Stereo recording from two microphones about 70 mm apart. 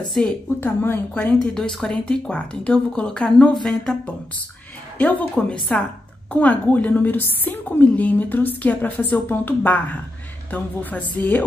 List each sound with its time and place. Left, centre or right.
0.6 s a woman's voice: left
1.1 s speech: centre
4.9 s a woman's voice: left